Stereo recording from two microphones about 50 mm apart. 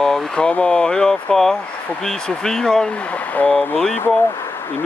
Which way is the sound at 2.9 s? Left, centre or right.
Left.